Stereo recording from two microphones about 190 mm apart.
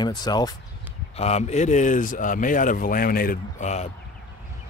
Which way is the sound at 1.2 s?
35° left (ahead or behind).